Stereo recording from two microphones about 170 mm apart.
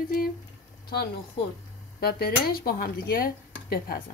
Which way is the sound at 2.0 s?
65° left (ahead or behind).